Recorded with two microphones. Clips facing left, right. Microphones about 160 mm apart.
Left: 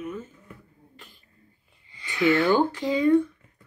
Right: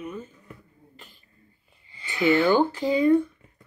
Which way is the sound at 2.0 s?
20° right (ahead or behind).